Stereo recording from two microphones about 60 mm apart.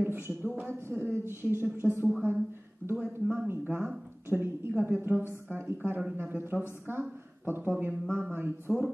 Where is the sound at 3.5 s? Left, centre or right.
Right.